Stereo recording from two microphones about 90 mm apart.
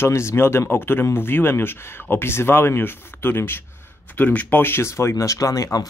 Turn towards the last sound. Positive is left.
turn(degrees=40)  # may be behind; listen again after turning